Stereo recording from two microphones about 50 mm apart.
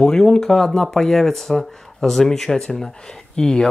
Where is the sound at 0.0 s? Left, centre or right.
Centre.